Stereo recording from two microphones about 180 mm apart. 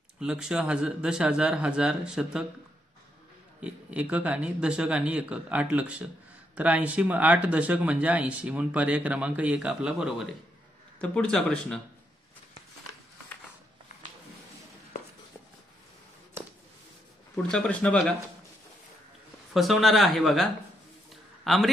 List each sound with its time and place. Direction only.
0.2 s speech: 5° right (ahead or behind)
3.6 s speech: 5° right (ahead or behind)
11.0 s speech: 5° left (ahead or behind)
17.5 s speech: 5° left (ahead or behind)
19.5 s speech: centre (ahead or behind)
21.1 s a sound: centre (ahead or behind)